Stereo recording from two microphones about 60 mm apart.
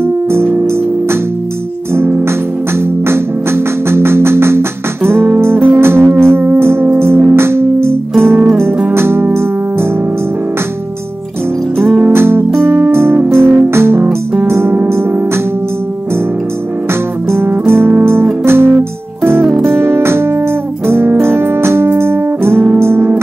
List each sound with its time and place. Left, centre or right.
0.0 s music: right
2.0 s music: right
12.1 s music: right
14.0 s music: right
14.5 s music: right
17.5 s music: right